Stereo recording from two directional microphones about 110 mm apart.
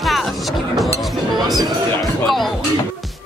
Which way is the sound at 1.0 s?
Centre (ahead or behind).